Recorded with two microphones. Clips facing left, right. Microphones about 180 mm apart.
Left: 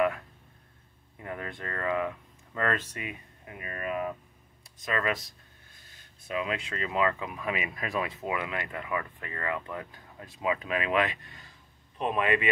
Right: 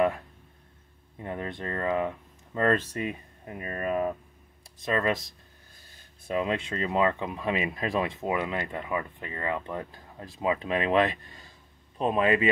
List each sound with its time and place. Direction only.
1.1 s speech: 25° right (ahead or behind)
6.2 s speech: 35° right (ahead or behind)